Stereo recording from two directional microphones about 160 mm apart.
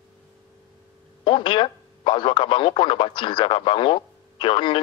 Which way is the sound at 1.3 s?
30° left (ahead or behind).